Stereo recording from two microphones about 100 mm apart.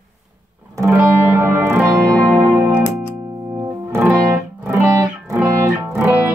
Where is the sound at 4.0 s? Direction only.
15° right (ahead or behind).